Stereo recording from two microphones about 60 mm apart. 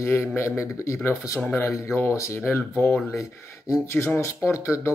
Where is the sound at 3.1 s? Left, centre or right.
Left.